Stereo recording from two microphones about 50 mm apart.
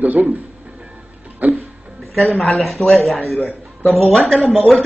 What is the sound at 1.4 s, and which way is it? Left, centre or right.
Speech, right.